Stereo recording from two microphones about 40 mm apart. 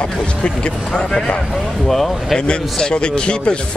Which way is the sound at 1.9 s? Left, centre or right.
Centre.